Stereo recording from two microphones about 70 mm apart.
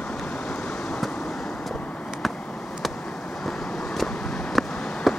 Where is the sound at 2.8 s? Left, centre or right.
Centre.